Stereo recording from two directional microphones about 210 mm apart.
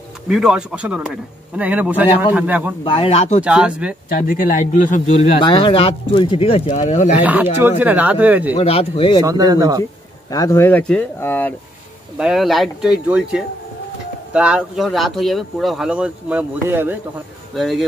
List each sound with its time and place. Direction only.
0.3 s speech: centre (ahead or behind)
2.8 s speech: 25° left (ahead or behind)
3.4 s speech: 5° right (ahead or behind)
4.1 s speech: 40° left (ahead or behind)
5.4 s speech: 25° left (ahead or behind)
7.2 s speech: 10° right (ahead or behind)
8.5 s speech: 30° left (ahead or behind)
9.2 s speech: 15° right (ahead or behind)
10.3 s speech: 15° left (ahead or behind); by 17.0 s 10° right (ahead or behind)
17.6 s speech: centre (ahead or behind)